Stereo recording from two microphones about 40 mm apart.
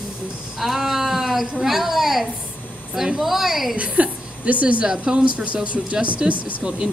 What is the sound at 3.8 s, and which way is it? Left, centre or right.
A woman's voice, right.